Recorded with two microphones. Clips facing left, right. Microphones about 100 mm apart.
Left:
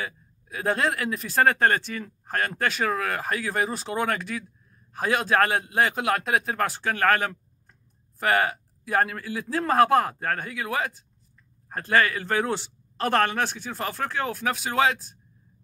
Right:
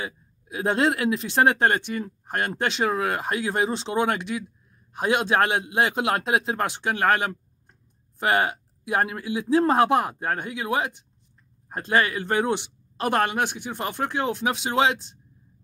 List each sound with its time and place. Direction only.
0.0 s speech: 25° right (ahead or behind)